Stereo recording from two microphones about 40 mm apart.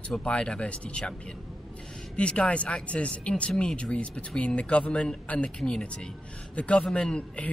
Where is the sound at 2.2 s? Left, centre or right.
Left.